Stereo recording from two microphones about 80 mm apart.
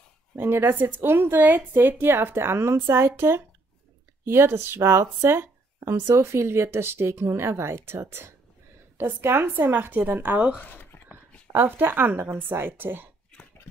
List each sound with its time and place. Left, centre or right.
0.4 s a woman's voice: right
10.6 s speech: left
11.5 s a woman's voice: right